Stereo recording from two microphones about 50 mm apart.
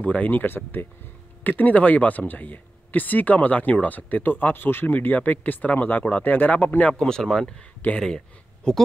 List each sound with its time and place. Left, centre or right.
0.0 s speech: left
0.3 s speech: left
6.9 s speech: centre
7.8 s speech: left
8.7 s speech: centre